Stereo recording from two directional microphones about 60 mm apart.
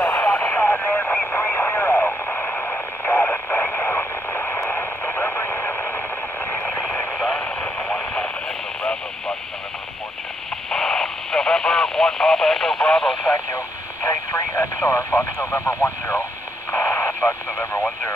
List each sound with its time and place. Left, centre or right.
0.2 s radio: left
7.3 s radio: left
10.7 s radio: centre
14.0 s a sound: left
15.3 s radio: left